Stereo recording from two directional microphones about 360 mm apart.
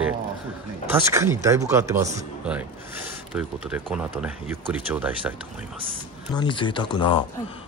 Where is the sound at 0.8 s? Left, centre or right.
Centre.